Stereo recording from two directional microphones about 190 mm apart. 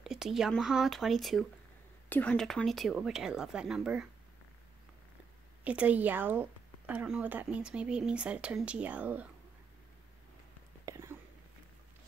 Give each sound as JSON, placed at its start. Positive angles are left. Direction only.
{"t": 0.0, "sound": "speech", "side_deg": 0}
{"t": 5.6, "sound": "speech", "side_deg": -5}
{"t": 10.9, "sound": "a sound", "side_deg": -15}